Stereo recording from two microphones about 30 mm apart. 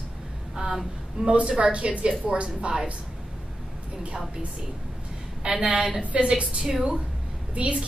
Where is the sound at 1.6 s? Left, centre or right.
Right.